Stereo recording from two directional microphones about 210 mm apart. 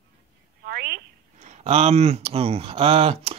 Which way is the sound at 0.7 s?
50° right (ahead or behind).